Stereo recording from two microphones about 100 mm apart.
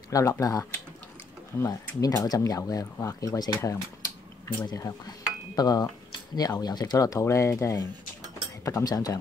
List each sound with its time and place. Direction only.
0.1 s speech: 35° left (ahead or behind)